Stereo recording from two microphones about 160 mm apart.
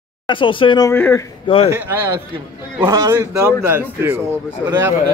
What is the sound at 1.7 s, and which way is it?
A man's voice, 10° right (ahead or behind).